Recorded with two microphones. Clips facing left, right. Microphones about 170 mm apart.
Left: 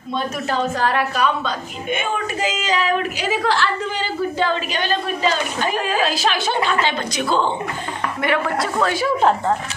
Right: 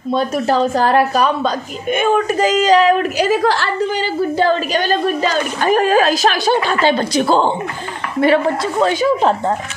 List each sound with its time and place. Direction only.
0.1 s a woman's voice: 35° right (ahead or behind)